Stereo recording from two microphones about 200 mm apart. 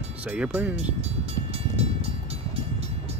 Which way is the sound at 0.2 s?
5° right (ahead or behind).